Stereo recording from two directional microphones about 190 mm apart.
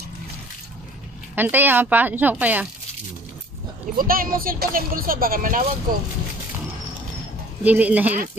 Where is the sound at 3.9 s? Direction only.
50° right (ahead or behind).